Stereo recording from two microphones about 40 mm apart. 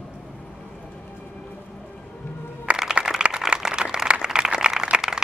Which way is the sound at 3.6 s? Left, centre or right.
Centre.